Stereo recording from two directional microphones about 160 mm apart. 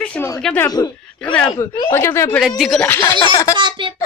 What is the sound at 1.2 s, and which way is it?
Speech, 5° left (ahead or behind).